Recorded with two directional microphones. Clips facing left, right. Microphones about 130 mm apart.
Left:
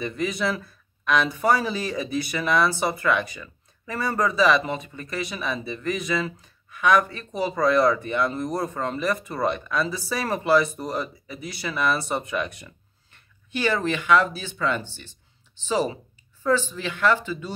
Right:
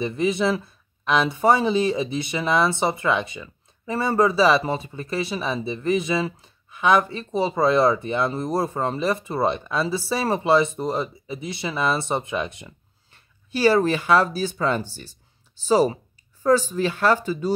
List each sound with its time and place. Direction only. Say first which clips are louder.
0.0 s speech: right 4 dB; 25° right (ahead or behind)